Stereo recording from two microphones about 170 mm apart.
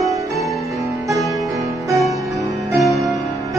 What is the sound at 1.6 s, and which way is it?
Music, 20° right (ahead or behind).